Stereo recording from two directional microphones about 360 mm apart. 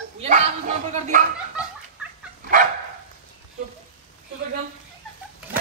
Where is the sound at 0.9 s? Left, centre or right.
Centre.